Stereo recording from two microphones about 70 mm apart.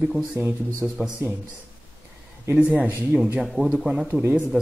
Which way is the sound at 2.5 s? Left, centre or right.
Centre.